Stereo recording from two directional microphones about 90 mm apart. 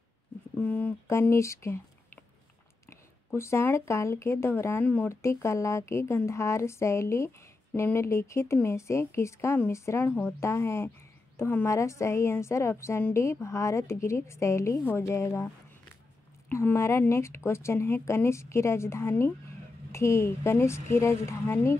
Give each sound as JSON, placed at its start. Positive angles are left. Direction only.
{"t": 0.6, "sound": "speech", "side_deg": 20}
{"t": 1.3, "sound": "a woman's voice", "side_deg": 30}
{"t": 3.3, "sound": "speech", "side_deg": 30}
{"t": 5.1, "sound": "a woman's voice", "side_deg": 30}
{"t": 10.0, "sound": "speech", "side_deg": 20}
{"t": 10.4, "sound": "a woman's voice", "side_deg": 30}
{"t": 16.6, "sound": "a woman's voice", "side_deg": 30}